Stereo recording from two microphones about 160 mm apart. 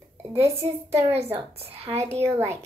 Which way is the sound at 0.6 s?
40° right (ahead or behind).